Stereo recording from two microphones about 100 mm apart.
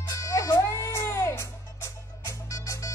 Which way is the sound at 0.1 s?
35° left (ahead or behind).